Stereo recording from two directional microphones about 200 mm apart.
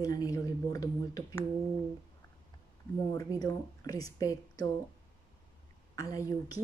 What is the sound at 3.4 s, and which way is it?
A woman's voice, 20° left (ahead or behind).